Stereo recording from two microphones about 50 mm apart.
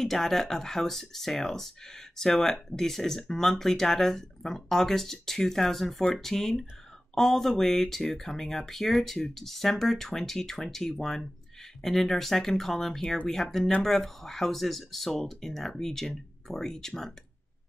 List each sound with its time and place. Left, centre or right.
0.0 s speech: centre